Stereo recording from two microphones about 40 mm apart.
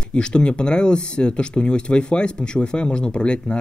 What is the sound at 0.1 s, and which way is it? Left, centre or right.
Speech, left.